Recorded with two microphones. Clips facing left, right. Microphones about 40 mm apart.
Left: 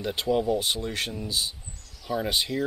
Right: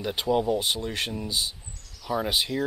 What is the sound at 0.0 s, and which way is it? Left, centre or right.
Speech, centre.